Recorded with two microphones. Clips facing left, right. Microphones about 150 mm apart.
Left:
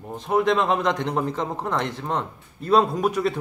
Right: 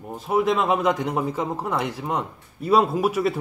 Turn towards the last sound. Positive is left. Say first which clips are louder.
# right 1 dB
turn(degrees=-5)  # may be behind; listen again after turning